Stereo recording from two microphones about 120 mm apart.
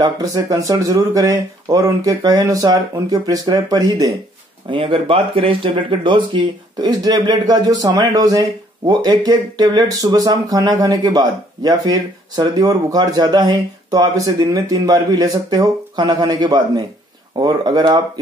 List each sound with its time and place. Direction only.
0.0 s speech: 30° right (ahead or behind)
4.6 s speech: 45° right (ahead or behind)